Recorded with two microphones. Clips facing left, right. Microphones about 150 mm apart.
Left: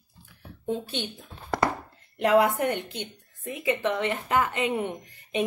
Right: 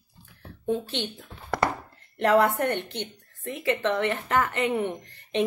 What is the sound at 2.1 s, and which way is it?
A woman's voice, 10° left (ahead or behind).